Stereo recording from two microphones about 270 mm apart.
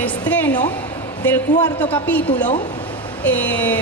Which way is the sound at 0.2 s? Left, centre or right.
Centre.